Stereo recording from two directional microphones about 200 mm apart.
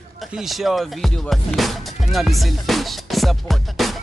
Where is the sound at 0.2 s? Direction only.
Centre (ahead or behind).